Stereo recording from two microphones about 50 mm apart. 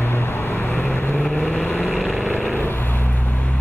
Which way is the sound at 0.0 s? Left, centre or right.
Left.